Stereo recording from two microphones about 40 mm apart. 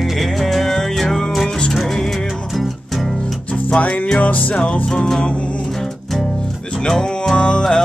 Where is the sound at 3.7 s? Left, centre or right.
Left.